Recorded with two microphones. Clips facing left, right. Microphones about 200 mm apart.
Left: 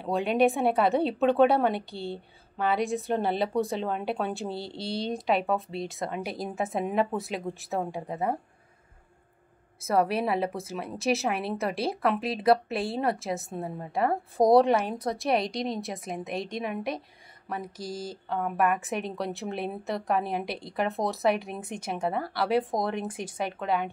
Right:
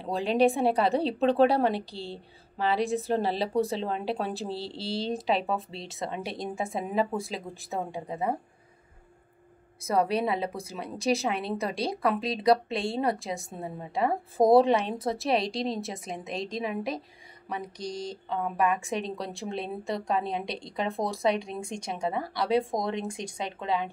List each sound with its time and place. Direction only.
0.0 s a woman's voice: centre (ahead or behind)
9.8 s a woman's voice: centre (ahead or behind)
23.4 s speech: 25° right (ahead or behind)